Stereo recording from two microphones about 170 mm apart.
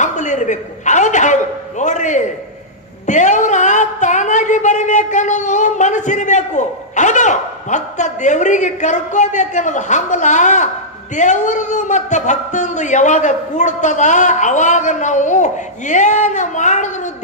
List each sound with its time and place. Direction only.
0.0 s a man's voice: 45° left (ahead or behind)